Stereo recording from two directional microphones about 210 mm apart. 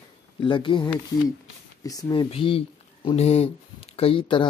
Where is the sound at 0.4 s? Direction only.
25° left (ahead or behind).